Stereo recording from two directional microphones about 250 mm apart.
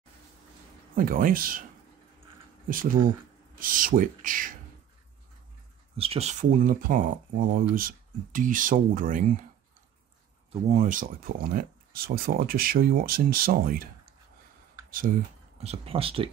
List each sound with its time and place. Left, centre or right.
0.9 s speech: right
3.5 s speech: right
5.9 s speech: right
10.5 s speech: right
14.9 s speech: right